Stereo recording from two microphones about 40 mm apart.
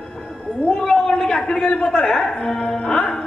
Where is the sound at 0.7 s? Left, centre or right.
Centre.